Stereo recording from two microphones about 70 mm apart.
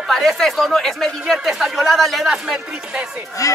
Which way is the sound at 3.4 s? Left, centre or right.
Left.